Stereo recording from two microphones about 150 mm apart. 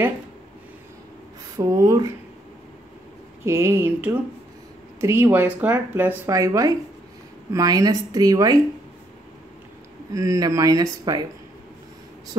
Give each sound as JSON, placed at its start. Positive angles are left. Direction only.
{"t": 1.6, "sound": "speech", "side_deg": -20}
{"t": 3.4, "sound": "speech", "side_deg": -15}
{"t": 10.1, "sound": "speech", "side_deg": -20}